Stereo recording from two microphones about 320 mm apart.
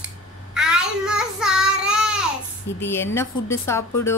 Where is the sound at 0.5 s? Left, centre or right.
Centre.